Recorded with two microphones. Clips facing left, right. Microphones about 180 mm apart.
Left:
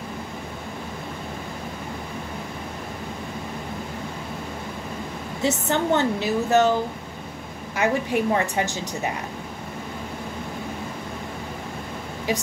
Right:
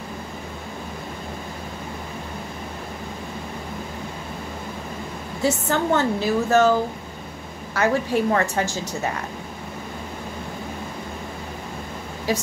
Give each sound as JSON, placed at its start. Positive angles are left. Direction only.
{"t": 5.4, "sound": "a woman's voice", "side_deg": 20}
{"t": 7.7, "sound": "a woman's voice", "side_deg": 15}